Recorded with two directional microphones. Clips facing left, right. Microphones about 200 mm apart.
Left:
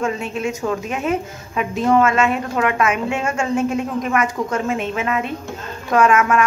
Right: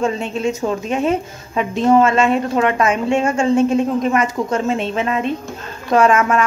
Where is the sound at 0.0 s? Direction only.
30° right (ahead or behind).